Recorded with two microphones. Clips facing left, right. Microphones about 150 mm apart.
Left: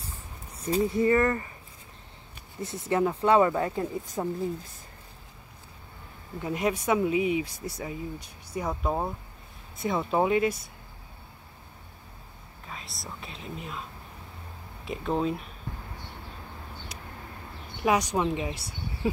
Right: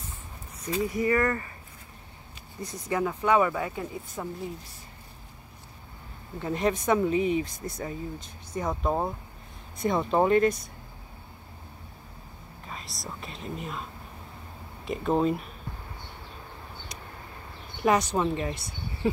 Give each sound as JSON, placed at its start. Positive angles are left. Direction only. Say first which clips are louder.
{"t": 0.6, "sound": "speech", "louder": "left 3 dB", "side_deg": 35}
{"t": 2.6, "sound": "speech", "louder": "left 3 dB", "side_deg": 25}
{"t": 6.4, "sound": "speech", "louder": "right 1 dB", "side_deg": 10}
{"t": 12.6, "sound": "speech", "louder": "right 1 dB", "side_deg": 0}
{"t": 14.9, "sound": "speech", "louder": "right 3 dB", "side_deg": 0}
{"t": 17.8, "sound": "speech", "louder": "right 1 dB", "side_deg": 10}